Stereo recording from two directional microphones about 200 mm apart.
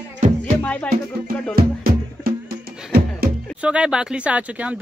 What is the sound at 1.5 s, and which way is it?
Music, 50° right (ahead or behind).